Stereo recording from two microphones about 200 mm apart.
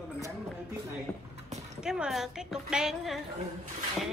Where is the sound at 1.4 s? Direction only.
35° right (ahead or behind).